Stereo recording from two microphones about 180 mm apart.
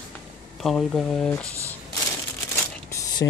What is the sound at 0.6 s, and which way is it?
Speech, 5° left (ahead or behind).